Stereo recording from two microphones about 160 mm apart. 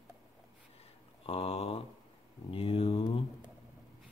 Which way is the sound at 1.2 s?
40° left (ahead or behind).